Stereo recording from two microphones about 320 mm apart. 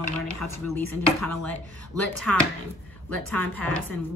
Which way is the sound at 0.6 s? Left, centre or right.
Left.